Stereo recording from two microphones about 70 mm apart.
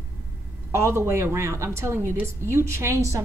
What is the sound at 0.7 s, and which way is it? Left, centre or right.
A woman's voice, right.